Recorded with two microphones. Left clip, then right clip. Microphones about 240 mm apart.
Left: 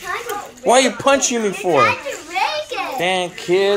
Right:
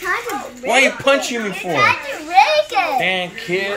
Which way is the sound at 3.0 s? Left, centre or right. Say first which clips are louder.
Even; centre.